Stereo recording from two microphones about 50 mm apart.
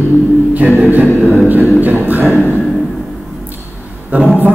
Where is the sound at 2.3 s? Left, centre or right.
Left.